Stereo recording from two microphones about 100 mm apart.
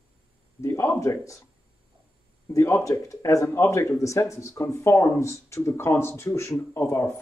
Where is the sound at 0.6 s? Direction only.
25° left (ahead or behind).